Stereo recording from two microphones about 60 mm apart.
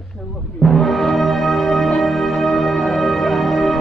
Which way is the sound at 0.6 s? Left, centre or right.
Centre.